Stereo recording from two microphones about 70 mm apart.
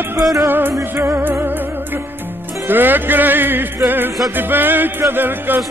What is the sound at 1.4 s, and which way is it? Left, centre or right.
Music, right.